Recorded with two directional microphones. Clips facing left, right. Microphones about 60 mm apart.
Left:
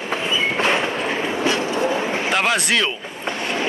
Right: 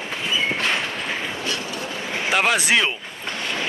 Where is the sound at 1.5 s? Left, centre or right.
Left.